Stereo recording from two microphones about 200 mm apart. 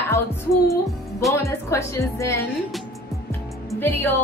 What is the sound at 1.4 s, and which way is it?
Speech, 15° left (ahead or behind).